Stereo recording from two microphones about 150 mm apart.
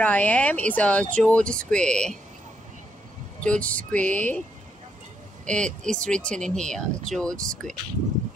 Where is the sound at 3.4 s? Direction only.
10° left (ahead or behind).